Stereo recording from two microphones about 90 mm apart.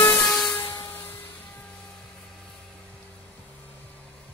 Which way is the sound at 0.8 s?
25° left (ahead or behind).